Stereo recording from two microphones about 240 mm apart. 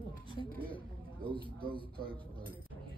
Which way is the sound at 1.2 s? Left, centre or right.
Right.